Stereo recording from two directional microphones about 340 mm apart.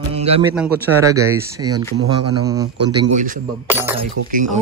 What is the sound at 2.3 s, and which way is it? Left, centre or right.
Speech, centre.